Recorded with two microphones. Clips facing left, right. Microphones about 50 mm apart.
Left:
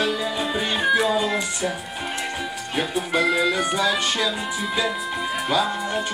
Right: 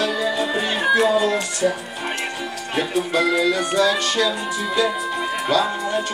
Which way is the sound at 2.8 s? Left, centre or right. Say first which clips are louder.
Right 2 dB; centre.